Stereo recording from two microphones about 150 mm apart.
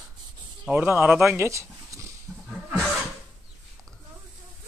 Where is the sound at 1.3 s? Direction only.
20° right (ahead or behind).